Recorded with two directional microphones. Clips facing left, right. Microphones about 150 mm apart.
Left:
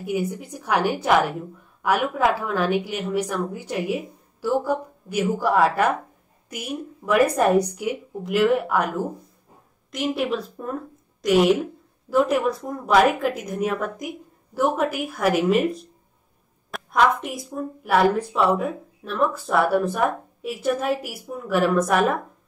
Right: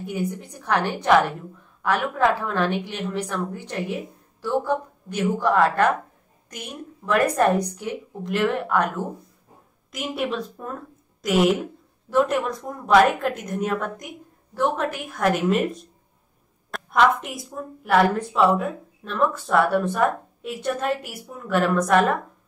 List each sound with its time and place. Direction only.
0.0 s a woman's voice: 10° left (ahead or behind)